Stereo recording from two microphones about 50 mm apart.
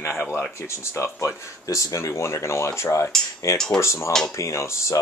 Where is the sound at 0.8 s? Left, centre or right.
Left.